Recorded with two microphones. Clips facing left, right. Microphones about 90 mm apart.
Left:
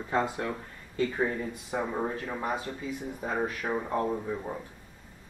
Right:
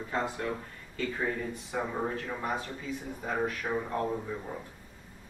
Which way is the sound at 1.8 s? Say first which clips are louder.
Left 1 dB; 10° left (ahead or behind).